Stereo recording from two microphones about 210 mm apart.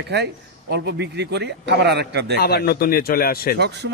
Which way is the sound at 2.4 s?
50° left (ahead or behind).